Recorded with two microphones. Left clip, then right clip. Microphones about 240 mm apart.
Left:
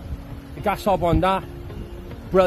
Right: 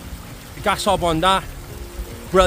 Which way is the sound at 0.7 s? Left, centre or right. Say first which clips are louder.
Right 2 dB; centre.